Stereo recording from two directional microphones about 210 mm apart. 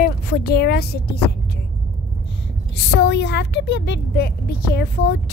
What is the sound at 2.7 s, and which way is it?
Speech, 55° left (ahead or behind).